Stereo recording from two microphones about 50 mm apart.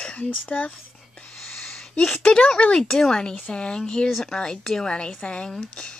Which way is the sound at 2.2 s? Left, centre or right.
Left.